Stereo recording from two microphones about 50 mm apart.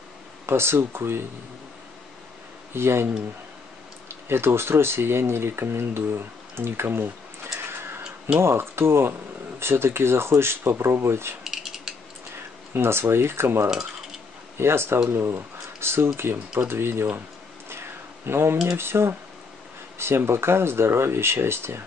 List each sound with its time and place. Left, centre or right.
0.5 s speech: right
2.7 s speech: right
4.1 s speech: right
7.6 s a sound: right
8.4 s speech: right
11.4 s a sound: centre
12.7 s speech: right
17.6 s a sound: right
18.7 s speech: right